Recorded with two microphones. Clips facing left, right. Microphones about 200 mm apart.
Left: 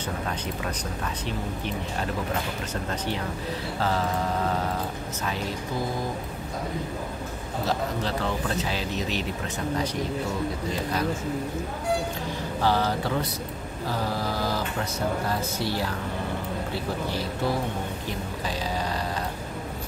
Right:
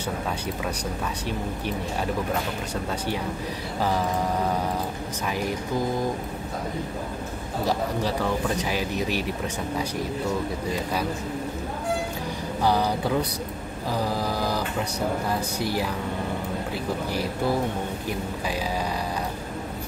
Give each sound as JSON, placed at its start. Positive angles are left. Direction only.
{"t": 7.6, "sound": "speech", "side_deg": -10}
{"t": 12.6, "sound": "speech", "side_deg": -15}
{"t": 15.6, "sound": "speech", "side_deg": -15}